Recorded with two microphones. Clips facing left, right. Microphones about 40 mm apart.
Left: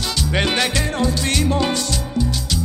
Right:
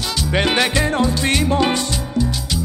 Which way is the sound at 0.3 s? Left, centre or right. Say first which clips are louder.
Right 3 dB; centre.